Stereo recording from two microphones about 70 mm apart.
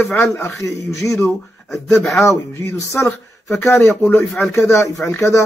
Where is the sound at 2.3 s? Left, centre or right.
Left.